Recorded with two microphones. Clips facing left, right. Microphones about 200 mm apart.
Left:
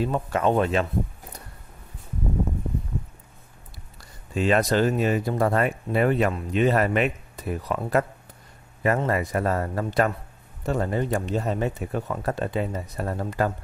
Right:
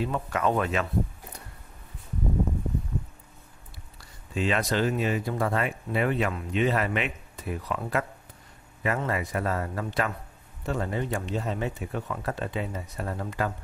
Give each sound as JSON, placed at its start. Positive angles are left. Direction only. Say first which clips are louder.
{"t": 0.0, "sound": "speech", "louder": "left 4 dB", "side_deg": 30}
{"t": 4.3, "sound": "speech", "louder": "left 5 dB", "side_deg": 45}